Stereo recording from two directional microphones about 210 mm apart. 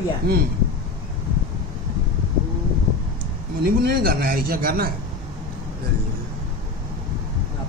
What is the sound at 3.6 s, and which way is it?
A man's voice, 45° right (ahead or behind).